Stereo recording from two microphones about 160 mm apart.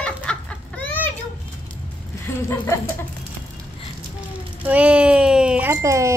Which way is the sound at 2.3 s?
15° left (ahead or behind).